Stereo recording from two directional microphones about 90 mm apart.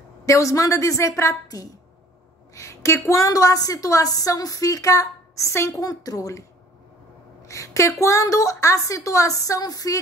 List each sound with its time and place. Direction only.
0.2 s a woman's voice: 35° left (ahead or behind)
5.8 s a woman's voice: 40° left (ahead or behind)
7.4 s a woman's voice: 35° left (ahead or behind)